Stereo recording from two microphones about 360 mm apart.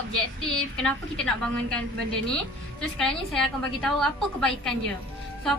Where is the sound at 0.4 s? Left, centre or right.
Centre.